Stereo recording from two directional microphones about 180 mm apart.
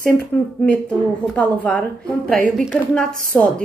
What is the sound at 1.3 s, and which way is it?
A woman's voice, 5° left (ahead or behind).